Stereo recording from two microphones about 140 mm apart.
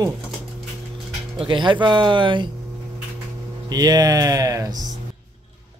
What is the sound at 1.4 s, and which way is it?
A man's voice, 35° right (ahead or behind).